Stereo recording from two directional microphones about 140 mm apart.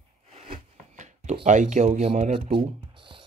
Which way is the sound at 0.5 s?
60° right (ahead or behind).